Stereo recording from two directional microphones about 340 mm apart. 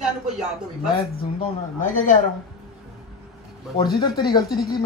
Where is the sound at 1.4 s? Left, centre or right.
Left.